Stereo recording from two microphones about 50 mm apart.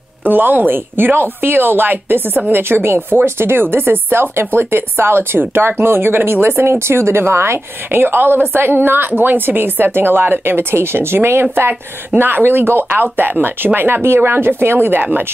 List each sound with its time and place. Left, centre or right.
0.2 s a woman's voice: right
12.2 s a woman's voice: right